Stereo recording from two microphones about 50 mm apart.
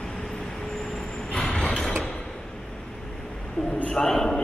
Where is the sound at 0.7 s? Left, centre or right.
Centre.